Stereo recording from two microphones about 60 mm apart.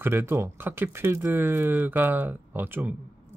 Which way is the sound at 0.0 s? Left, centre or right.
Right.